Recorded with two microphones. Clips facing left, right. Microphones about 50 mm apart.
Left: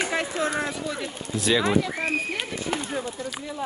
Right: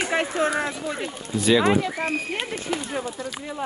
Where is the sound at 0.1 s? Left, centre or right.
Right.